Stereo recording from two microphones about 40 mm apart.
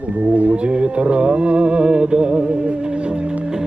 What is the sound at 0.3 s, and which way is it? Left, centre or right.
Music, right.